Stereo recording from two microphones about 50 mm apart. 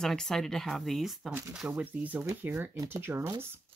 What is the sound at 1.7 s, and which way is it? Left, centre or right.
Speech, right.